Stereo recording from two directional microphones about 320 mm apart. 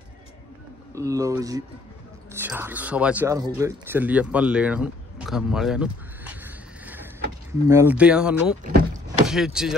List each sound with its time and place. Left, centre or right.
0.9 s speech: centre
8.6 s power windows: right
9.3 s speech: centre